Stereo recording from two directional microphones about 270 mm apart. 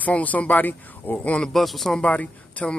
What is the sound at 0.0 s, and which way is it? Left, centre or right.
Speech, centre.